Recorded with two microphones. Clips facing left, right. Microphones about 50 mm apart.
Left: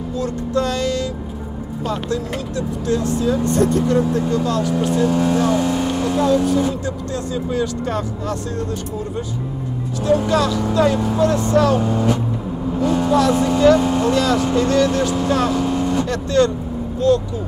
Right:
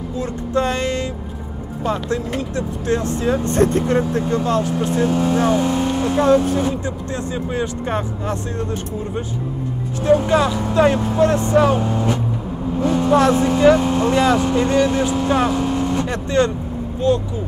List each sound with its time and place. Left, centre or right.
0.2 s music: right
1.9 s speech: right
5.1 s speech: centre
10.0 s speech: right